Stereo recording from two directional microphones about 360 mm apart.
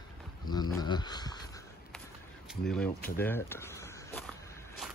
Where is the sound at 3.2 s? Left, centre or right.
Centre.